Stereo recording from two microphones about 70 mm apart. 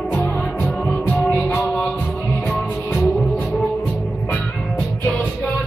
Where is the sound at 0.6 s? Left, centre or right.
Left.